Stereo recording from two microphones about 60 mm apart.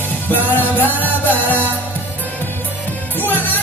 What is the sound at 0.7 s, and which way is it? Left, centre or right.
Music, left.